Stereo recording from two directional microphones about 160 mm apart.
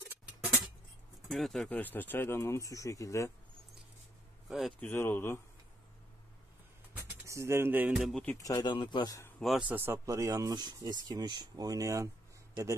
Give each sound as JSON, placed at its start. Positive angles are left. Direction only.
{"t": 1.3, "sound": "speech", "side_deg": 0}
{"t": 4.5, "sound": "speech", "side_deg": 0}
{"t": 4.7, "sound": "speech", "side_deg": 15}
{"t": 6.9, "sound": "speech", "side_deg": -15}
{"t": 8.4, "sound": "speech", "side_deg": 20}
{"t": 9.4, "sound": "speech", "side_deg": -5}